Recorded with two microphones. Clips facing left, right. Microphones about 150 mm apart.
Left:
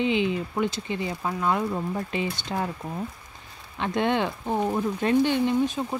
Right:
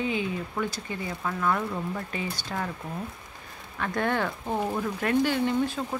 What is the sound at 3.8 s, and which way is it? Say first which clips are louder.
Speech: left 3 dB; 20° left (ahead or behind).